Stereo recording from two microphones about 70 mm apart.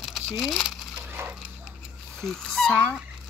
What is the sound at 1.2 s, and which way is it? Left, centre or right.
Dog, right.